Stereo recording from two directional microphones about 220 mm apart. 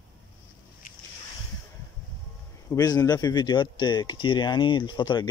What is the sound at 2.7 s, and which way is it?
Speech, 15° left (ahead or behind).